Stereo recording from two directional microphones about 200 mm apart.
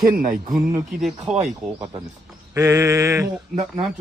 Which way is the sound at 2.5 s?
15° right (ahead or behind).